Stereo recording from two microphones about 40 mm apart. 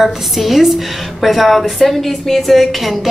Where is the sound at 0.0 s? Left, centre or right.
Centre.